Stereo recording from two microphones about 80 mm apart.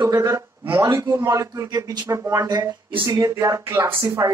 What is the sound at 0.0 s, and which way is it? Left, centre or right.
A man's voice, right.